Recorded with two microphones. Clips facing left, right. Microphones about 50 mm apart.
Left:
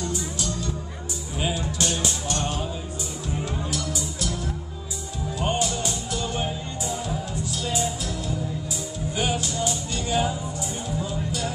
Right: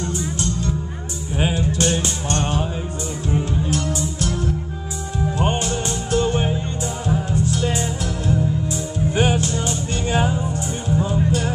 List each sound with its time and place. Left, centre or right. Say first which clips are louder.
0.0 s music: right 4 dB; right